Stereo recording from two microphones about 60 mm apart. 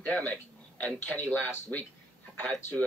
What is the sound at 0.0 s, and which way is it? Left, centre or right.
Speech, left.